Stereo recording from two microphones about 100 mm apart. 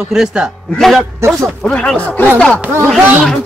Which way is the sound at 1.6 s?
10° left (ahead or behind).